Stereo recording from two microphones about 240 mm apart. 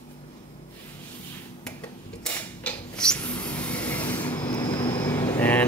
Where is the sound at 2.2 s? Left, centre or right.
Centre.